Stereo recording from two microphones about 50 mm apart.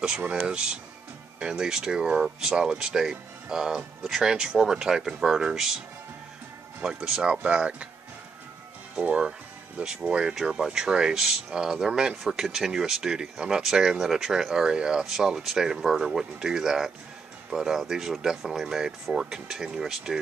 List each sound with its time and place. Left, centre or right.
0.3 s speech: centre
7.1 s speech: centre
9.8 s speech: right